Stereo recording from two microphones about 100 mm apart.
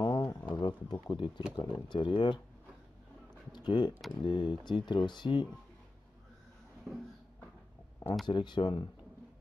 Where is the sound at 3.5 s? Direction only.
50° left (ahead or behind).